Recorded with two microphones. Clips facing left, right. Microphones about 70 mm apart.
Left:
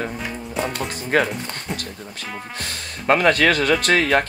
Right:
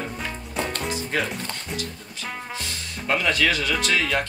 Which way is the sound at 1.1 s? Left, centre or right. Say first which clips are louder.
Left 8 dB; left.